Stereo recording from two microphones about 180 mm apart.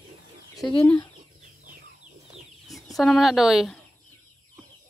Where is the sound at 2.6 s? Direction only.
Centre (ahead or behind).